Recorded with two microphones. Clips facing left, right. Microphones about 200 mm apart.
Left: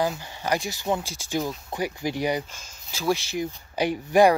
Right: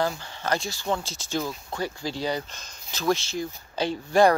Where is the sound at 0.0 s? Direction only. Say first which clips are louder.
Left 1 dB; 15° left (ahead or behind).